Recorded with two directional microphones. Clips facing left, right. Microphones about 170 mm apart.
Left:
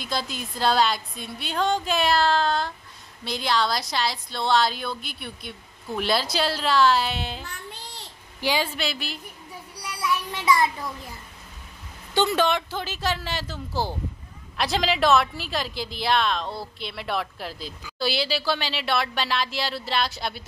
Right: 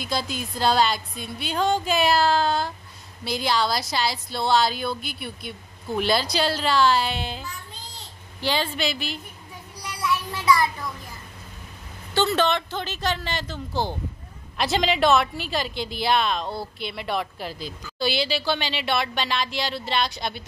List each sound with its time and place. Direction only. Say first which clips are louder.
0.0 s a woman's voice: right 2 dB; centre (ahead or behind)
7.4 s child singing: even; 60° left (ahead or behind)
8.4 s a woman's voice: even; 10° left (ahead or behind)
9.8 s child singing: right 1 dB; 10° left (ahead or behind)
12.1 s a woman's voice: even; 15° left (ahead or behind)